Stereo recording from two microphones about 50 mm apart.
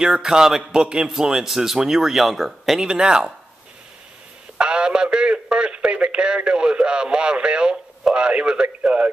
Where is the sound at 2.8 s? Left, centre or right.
Centre.